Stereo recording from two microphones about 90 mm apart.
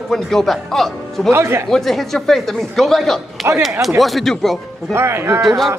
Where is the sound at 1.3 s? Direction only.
30° right (ahead or behind).